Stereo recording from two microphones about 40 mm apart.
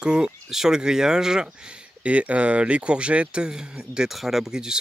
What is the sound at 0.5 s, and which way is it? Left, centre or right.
Speech, centre.